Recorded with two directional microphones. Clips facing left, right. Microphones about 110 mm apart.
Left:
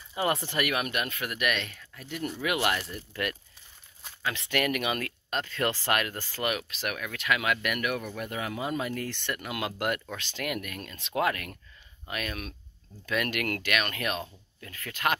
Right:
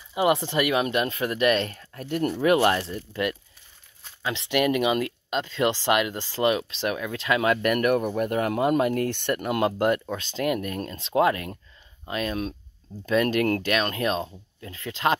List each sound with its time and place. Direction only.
0.1 s speech: 20° right (ahead or behind); by 9.4 s 50° right (ahead or behind)
9.4 s speech: 40° right (ahead or behind)